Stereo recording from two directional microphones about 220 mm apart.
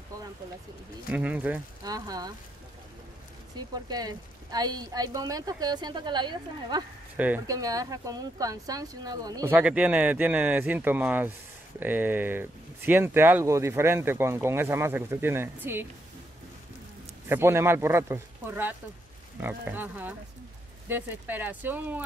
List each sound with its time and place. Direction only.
1.1 s speech: 5° right (ahead or behind)
3.5 s speech: 15° right (ahead or behind)
7.2 s speech: 5° right (ahead or behind)
17.3 s speech: 10° right (ahead or behind)